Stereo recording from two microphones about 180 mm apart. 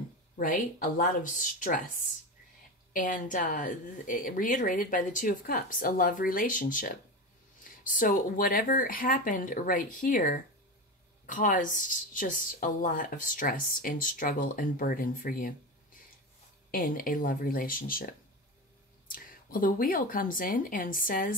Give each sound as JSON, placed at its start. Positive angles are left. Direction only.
{"t": 0.4, "sound": "a woman's voice", "side_deg": 50}
{"t": 16.7, "sound": "a woman's voice", "side_deg": 50}